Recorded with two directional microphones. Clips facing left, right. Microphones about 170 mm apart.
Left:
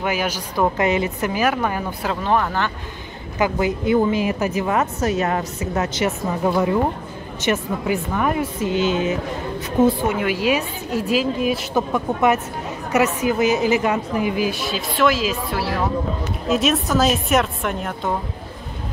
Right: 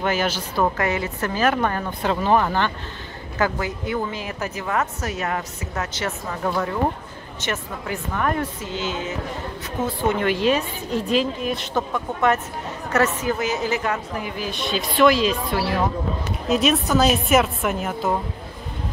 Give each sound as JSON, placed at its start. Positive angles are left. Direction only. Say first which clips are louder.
{"t": 0.0, "sound": "a woman's voice", "louder": "even", "side_deg": 10}
{"t": 2.2, "sound": "a woman's voice", "louder": "right 1 dB", "side_deg": -5}
{"t": 3.3, "sound": "speech", "louder": "left 4 dB", "side_deg": 15}
{"t": 5.9, "sound": "a woman's voice", "louder": "left 6 dB", "side_deg": 15}